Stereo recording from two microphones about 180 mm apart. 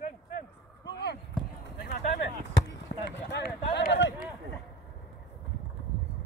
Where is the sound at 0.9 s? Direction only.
65° left (ahead or behind).